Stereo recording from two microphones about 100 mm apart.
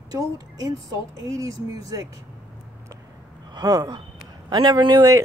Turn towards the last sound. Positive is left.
turn(degrees=-45)  # may be behind; listen again after turning